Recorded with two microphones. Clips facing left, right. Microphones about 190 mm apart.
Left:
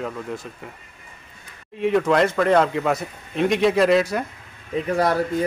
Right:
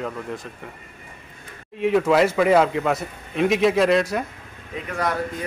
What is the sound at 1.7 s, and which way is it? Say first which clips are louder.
A man's voice: right 1 dB; centre (ahead or behind).